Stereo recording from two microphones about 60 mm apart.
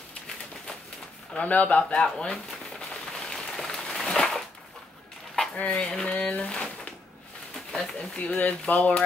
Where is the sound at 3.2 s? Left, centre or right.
Centre.